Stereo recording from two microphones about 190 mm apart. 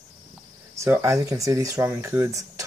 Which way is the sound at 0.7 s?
15° right (ahead or behind).